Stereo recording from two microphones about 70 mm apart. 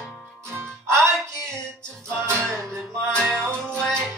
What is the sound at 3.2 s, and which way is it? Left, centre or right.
Music, centre.